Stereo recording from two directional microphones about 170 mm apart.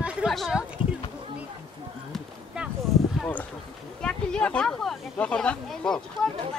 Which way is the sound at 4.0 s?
5° left (ahead or behind).